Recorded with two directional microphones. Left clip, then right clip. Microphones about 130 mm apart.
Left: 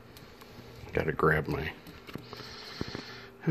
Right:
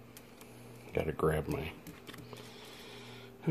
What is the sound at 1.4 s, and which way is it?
Speech, 5° right (ahead or behind).